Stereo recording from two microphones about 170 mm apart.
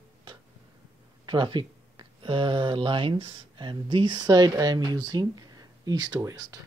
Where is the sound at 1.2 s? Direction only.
25° right (ahead or behind).